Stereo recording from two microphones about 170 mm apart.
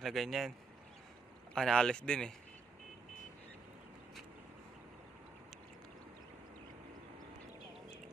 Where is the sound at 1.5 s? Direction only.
5° left (ahead or behind).